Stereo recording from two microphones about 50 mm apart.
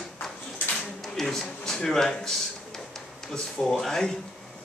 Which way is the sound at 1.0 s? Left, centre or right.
Centre.